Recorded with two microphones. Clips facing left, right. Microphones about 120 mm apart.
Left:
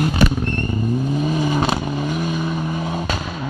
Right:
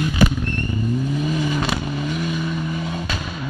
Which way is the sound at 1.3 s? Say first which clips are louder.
Left 3 dB; 35° left (ahead or behind).